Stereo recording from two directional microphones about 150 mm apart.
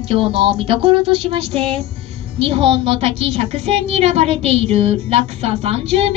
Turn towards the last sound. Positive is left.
turn(degrees=-40)  # may be behind; listen again after turning